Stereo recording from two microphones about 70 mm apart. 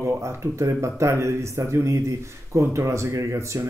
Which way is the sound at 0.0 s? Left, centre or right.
Right.